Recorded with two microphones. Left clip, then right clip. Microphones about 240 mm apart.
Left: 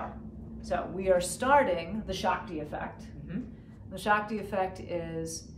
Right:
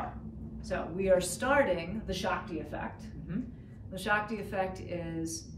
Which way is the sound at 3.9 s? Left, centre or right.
Centre.